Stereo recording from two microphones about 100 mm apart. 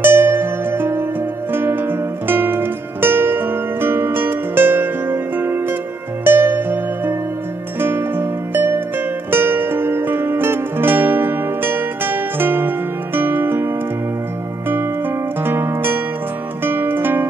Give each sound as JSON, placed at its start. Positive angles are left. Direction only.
{"t": 0.0, "sound": "music", "side_deg": -20}
{"t": 15.4, "sound": "music", "side_deg": -20}